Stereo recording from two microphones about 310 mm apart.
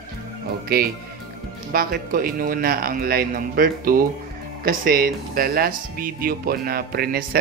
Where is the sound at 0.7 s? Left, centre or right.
Right.